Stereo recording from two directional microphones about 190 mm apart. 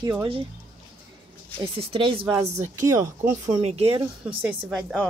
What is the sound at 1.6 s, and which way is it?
Speech, 30° right (ahead or behind).